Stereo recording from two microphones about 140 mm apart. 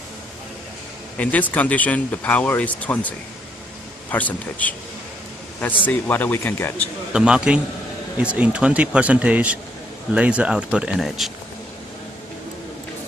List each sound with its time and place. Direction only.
1.1 s speech: 10° left (ahead or behind)
5.9 s speech: 15° left (ahead or behind)
7.1 s a man's voice: 5° right (ahead or behind)